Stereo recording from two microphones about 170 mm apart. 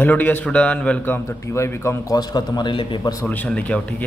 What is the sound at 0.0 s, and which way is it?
A man's voice, 10° left (ahead or behind).